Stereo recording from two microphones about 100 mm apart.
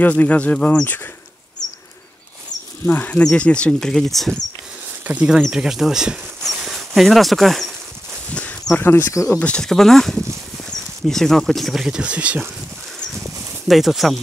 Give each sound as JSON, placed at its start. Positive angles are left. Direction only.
{"t": 0.0, "sound": "speech", "side_deg": 15}
{"t": 2.9, "sound": "speech", "side_deg": 15}
{"t": 5.0, "sound": "speech", "side_deg": -15}
{"t": 8.3, "sound": "a sound", "side_deg": 15}
{"t": 8.7, "sound": "speech", "side_deg": 20}
{"t": 9.4, "sound": "speech", "side_deg": 10}
{"t": 13.7, "sound": "speech", "side_deg": 0}